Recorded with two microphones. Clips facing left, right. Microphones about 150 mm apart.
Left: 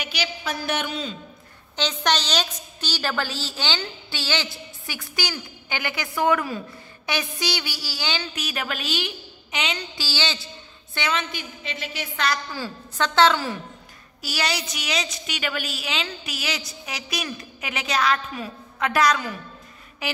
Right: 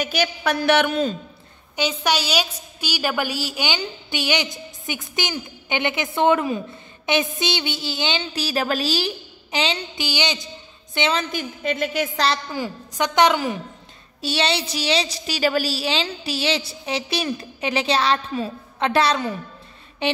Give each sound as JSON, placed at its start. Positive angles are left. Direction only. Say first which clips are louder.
{"t": 0.0, "sound": "a woman's voice", "louder": "right 7 dB", "side_deg": -50}
{"t": 0.4, "sound": "speech", "louder": "right 10 dB", "side_deg": -70}
{"t": 1.8, "sound": "a woman's voice", "louder": "right 2 dB", "side_deg": -10}
{"t": 9.9, "sound": "a woman's voice", "louder": "right 4 dB", "side_deg": -15}
{"t": 11.1, "sound": "a woman's voice", "louder": "right 4 dB", "side_deg": -45}
{"t": 12.2, "sound": "a woman's voice", "louder": "left 1 dB", "side_deg": -25}
{"t": 14.2, "sound": "a woman's voice", "louder": "right 5 dB", "side_deg": -25}